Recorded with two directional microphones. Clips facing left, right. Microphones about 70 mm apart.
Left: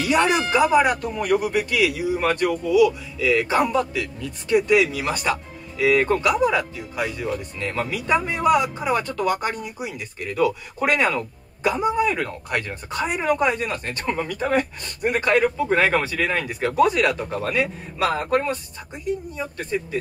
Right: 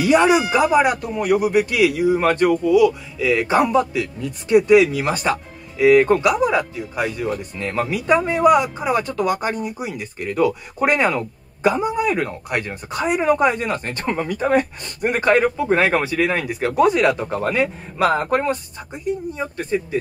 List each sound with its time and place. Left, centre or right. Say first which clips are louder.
0.0 s speech: right 5 dB; centre
2.0 s speech: right 5 dB; right